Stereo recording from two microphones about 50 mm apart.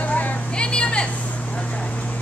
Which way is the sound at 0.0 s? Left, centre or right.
Left.